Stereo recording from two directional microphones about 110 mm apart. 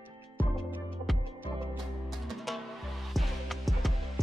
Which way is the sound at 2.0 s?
Centre (ahead or behind).